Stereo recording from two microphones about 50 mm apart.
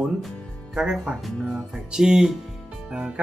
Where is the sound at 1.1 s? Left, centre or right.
Centre.